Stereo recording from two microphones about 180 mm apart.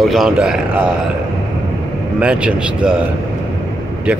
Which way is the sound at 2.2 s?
5° right (ahead or behind).